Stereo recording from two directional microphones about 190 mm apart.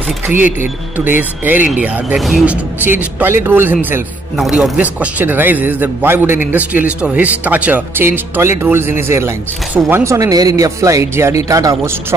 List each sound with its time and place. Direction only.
0.9 s speech: 10° right (ahead or behind)
4.4 s speech: centre (ahead or behind); by 11.9 s 15° right (ahead or behind)